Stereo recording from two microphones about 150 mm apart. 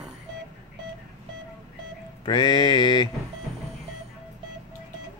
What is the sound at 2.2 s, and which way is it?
Speech, 30° left (ahead or behind).